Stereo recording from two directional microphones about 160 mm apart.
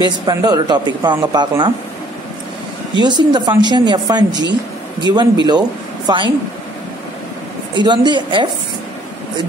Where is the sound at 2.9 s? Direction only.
25° right (ahead or behind).